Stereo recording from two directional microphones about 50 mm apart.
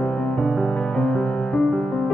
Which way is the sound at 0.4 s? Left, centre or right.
Centre.